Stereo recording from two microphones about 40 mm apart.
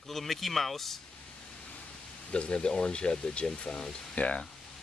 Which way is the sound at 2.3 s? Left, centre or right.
Left.